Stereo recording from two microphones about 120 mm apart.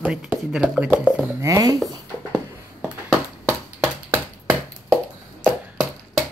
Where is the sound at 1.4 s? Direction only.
30° right (ahead or behind).